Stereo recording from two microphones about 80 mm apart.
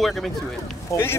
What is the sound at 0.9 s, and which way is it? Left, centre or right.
Speech, left.